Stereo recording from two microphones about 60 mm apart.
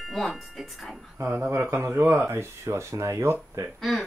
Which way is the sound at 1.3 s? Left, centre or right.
Right.